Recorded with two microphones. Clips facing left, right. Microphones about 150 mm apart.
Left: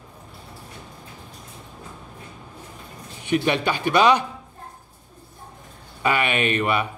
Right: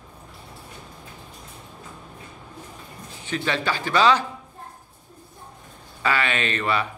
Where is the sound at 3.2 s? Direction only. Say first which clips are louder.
Left 5 dB; 15° left (ahead or behind).